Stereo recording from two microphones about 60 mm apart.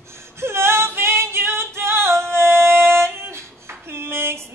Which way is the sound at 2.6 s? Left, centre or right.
Right.